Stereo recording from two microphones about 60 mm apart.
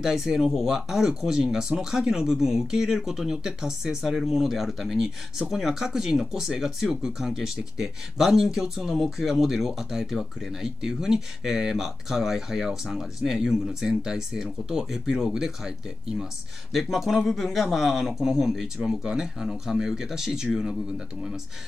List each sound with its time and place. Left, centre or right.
0.0 s a man's voice: centre